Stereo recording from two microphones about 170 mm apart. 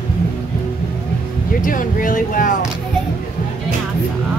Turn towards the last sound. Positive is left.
turn(degrees=50)  # may be behind; listen again after turning